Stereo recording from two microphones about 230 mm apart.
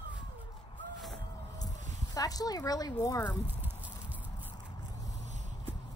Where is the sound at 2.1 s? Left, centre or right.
Centre.